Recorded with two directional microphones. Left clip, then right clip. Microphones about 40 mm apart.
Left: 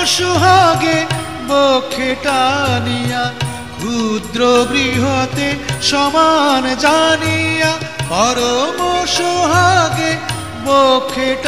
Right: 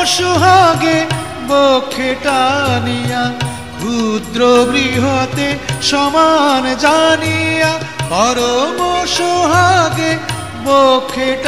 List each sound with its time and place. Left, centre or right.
0.0 s music: right